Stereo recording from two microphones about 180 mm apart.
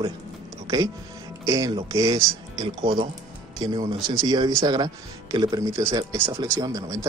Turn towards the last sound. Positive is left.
turn(degrees=-20)  # may be behind; listen again after turning